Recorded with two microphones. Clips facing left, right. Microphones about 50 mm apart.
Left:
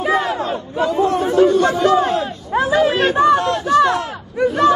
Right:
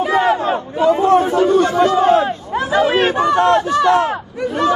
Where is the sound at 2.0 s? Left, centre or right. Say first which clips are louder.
Right 7 dB; right.